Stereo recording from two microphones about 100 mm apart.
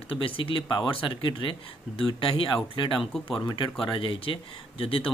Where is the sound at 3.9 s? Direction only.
60° left (ahead or behind).